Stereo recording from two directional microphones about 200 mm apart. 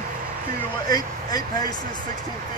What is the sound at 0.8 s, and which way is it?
Speech, 20° left (ahead or behind).